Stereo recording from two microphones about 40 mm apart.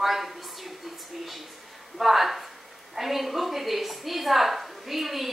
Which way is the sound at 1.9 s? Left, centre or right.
Centre.